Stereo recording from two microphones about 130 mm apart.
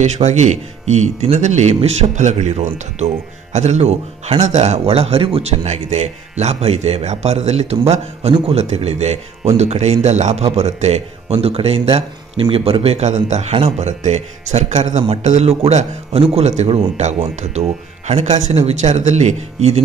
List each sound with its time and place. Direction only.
0.0 s a man's voice: 65° right (ahead or behind)